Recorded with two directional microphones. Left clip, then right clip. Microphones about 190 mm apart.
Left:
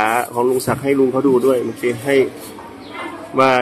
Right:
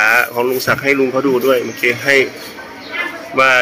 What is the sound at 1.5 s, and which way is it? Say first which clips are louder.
Speech: right 4 dB; 20° left (ahead or behind).